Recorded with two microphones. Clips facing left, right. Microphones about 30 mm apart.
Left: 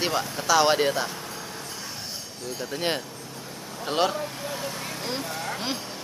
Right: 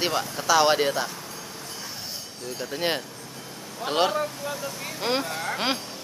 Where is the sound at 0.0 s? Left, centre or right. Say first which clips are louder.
Even; centre.